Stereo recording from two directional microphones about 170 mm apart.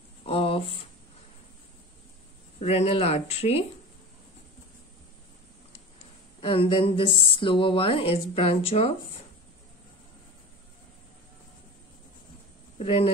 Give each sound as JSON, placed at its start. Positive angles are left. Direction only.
{"t": 0.2, "sound": "a sound", "side_deg": 35}
{"t": 2.6, "sound": "speech", "side_deg": 35}
{"t": 6.4, "sound": "speech", "side_deg": 35}
{"t": 12.7, "sound": "speech", "side_deg": 35}